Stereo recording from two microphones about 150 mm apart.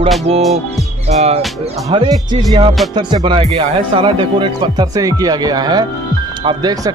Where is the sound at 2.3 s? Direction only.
35° right (ahead or behind).